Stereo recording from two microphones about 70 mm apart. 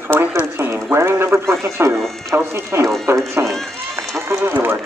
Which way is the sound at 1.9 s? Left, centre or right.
Centre.